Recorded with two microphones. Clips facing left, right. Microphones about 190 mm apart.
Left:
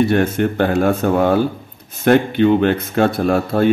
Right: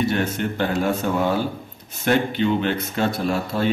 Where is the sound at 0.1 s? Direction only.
55° left (ahead or behind).